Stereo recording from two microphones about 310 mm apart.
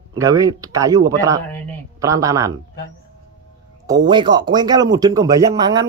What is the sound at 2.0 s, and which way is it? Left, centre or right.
Speech, centre.